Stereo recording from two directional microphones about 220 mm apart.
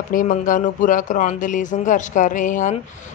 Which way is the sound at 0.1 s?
40° left (ahead or behind).